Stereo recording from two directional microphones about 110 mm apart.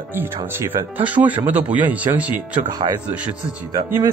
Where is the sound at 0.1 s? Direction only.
20° right (ahead or behind).